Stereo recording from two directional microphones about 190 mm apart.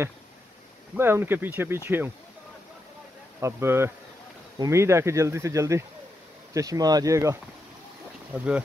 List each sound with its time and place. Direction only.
0.9 s speech: 10° right (ahead or behind)
3.3 s speech: 15° right (ahead or behind)